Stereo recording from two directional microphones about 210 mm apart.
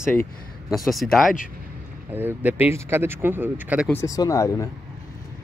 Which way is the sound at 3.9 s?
15° left (ahead or behind).